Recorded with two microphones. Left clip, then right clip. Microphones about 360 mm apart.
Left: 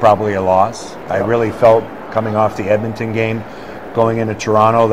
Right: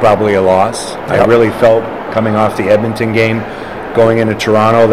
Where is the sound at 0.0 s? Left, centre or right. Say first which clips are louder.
Right 3 dB; left.